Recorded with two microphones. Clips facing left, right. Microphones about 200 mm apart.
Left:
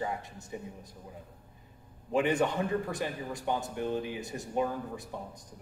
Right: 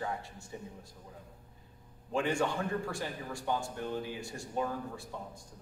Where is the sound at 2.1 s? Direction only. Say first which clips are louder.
Left 4 dB; 20° left (ahead or behind).